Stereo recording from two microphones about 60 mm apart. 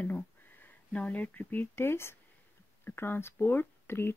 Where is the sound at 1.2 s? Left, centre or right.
Left.